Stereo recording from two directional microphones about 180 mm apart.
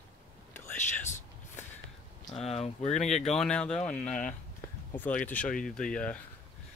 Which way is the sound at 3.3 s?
5° left (ahead or behind).